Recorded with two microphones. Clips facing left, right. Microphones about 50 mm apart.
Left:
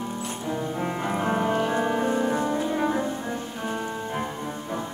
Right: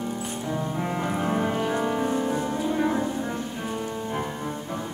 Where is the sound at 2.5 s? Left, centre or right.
Centre.